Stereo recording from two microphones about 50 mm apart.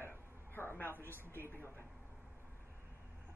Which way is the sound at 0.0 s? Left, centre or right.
Left.